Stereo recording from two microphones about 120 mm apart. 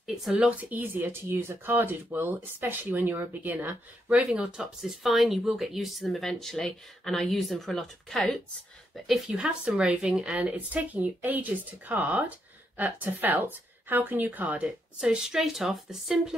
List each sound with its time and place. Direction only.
0.0 s speech: 5° right (ahead or behind)